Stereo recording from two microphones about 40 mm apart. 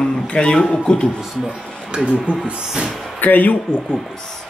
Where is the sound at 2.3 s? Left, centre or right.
Right.